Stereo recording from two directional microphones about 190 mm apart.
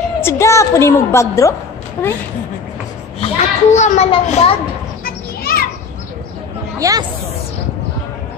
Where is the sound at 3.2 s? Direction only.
35° left (ahead or behind).